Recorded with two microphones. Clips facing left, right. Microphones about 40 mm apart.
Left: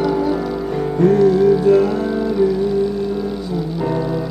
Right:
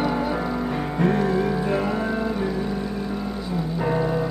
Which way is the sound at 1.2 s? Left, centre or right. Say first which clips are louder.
Left 10 dB; right.